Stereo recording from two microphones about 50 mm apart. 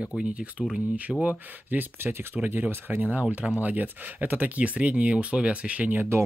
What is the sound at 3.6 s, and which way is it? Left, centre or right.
Speech, right.